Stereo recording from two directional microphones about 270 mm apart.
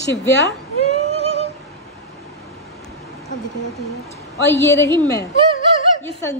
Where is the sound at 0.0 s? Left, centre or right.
Left.